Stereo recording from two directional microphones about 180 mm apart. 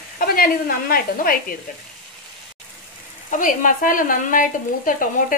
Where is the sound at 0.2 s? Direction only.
50° left (ahead or behind).